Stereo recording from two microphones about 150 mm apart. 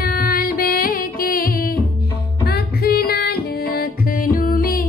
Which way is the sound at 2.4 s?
90° left.